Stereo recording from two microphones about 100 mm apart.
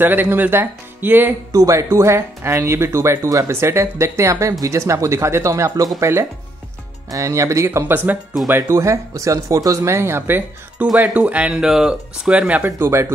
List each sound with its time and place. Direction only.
0.0 s speech: 20° right (ahead or behind)
1.5 s speech: 30° right (ahead or behind)